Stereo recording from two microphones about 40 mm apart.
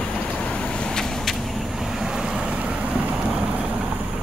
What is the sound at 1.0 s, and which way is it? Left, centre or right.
Vehicle, centre.